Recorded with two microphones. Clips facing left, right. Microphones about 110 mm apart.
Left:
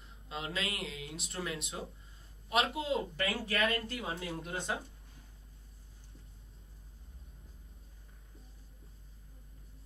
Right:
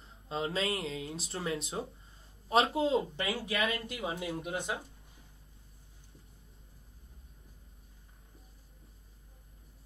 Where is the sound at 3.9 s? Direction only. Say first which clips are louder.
Right 3 dB; 15° right (ahead or behind).